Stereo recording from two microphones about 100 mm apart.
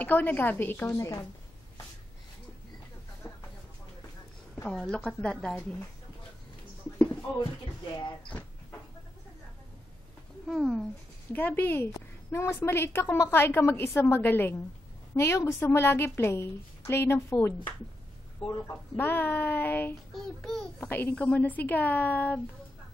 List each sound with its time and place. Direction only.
0.0 s a woman's voice: 15° left (ahead or behind)
0.9 s a woman's voice: 35° left (ahead or behind)
4.6 s a woman's voice: 5° left (ahead or behind)
7.9 s speech: 55° left (ahead or behind)
10.4 s speech: centre (ahead or behind)
11.3 s a woman's voice: 20° left (ahead or behind)
18.7 s a woman's voice: 20° left (ahead or behind)